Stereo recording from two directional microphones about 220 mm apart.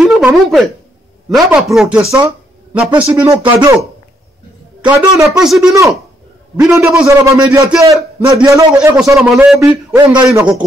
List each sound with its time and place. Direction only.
0.0 s a sound: centre (ahead or behind)
1.3 s speech: centre (ahead or behind)
4.8 s speech: 10° right (ahead or behind)